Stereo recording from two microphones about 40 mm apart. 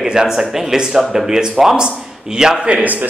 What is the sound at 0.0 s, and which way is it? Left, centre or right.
Speech, centre.